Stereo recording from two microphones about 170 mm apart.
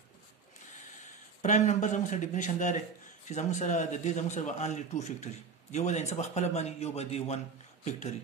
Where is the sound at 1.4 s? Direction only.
45° left (ahead or behind).